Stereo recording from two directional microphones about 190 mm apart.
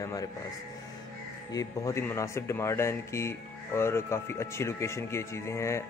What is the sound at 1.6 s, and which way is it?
Speech, 15° left (ahead or behind).